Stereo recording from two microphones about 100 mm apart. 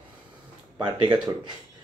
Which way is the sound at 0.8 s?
50° right (ahead or behind).